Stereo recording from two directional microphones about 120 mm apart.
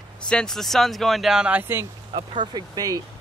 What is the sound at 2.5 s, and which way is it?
Speech, 30° right (ahead or behind).